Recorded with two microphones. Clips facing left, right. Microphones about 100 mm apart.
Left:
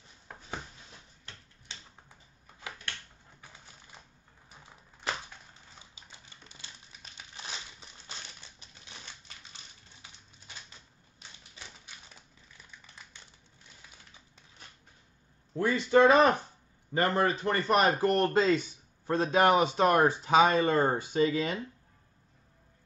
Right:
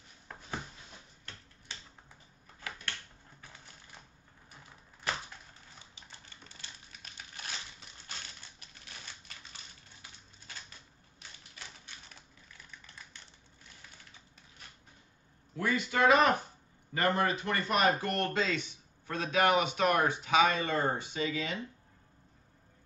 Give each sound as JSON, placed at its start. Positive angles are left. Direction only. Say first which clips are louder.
{"t": 5.9, "sound": "typing", "louder": "even", "side_deg": 15}
{"t": 8.1, "sound": "typewriter", "louder": "even", "side_deg": 20}
{"t": 11.5, "sound": "typewriter", "louder": "even", "side_deg": 15}
{"t": 15.5, "sound": "speech", "louder": "left 8 dB", "side_deg": 30}